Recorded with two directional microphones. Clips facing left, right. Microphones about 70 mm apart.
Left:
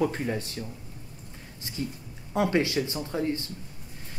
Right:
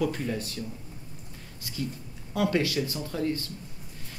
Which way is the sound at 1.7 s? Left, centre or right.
Left.